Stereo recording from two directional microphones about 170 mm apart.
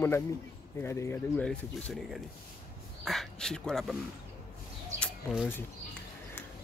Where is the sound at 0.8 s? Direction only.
15° left (ahead or behind).